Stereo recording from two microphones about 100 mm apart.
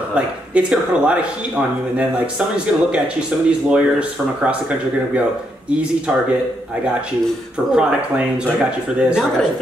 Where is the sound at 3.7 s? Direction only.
10° right (ahead or behind).